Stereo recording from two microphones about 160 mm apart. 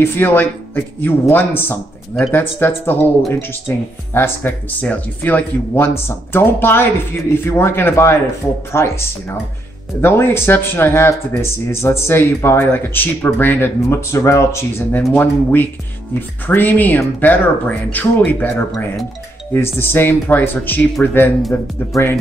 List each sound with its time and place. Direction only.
0.0 s speech: 15° left (ahead or behind)